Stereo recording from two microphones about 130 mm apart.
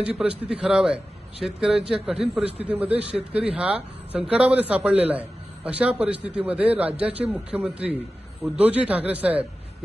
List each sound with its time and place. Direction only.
0.4 s a man's voice: 5° right (ahead or behind)
3.2 s speech: 50° right (ahead or behind)
3.5 s a man's voice: 10° right (ahead or behind)